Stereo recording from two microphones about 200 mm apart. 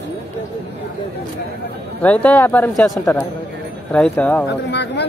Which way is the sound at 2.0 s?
5° left (ahead or behind).